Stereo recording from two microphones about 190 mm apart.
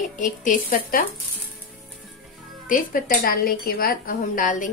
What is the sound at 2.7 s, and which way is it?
A woman's voice, 50° left (ahead or behind).